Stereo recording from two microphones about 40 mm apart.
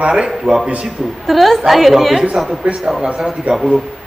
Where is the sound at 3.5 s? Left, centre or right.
Right.